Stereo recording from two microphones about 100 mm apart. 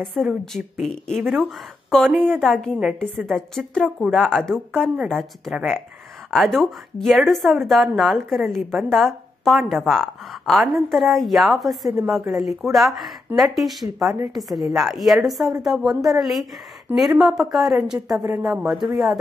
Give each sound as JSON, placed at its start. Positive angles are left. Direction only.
{"t": 0.0, "sound": "a woman's voice", "side_deg": 5}
{"t": 2.1, "sound": "a woman's voice", "side_deg": -20}
{"t": 2.4, "sound": "a woman's voice", "side_deg": 5}